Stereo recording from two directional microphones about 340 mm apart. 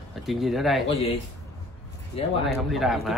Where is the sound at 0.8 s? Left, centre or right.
Centre.